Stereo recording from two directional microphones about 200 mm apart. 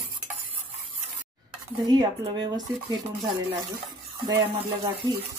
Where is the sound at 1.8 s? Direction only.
20° right (ahead or behind).